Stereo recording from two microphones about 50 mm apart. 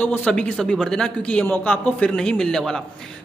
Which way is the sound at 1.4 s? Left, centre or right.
Left.